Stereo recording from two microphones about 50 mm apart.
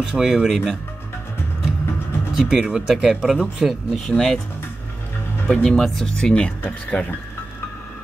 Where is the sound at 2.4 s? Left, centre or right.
Centre.